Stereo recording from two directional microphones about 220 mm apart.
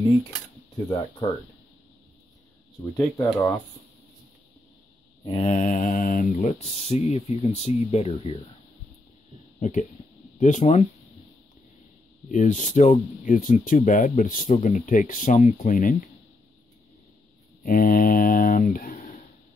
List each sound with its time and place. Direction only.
2.8 s speech: 10° left (ahead or behind)
5.2 s speech: 25° left (ahead or behind)
6.3 s speech: 30° left (ahead or behind)
9.6 s speech: 35° left (ahead or behind)
12.3 s speech: 35° left (ahead or behind)
17.6 s speech: 40° left (ahead or behind)